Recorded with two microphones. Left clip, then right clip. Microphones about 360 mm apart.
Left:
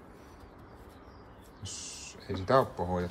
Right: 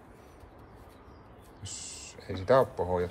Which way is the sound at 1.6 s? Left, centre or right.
Centre.